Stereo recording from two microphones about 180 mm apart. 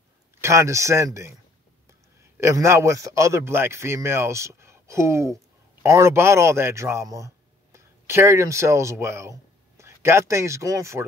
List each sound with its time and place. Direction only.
0.4 s a man's voice: 15° right (ahead or behind)
2.4 s a man's voice: 15° right (ahead or behind)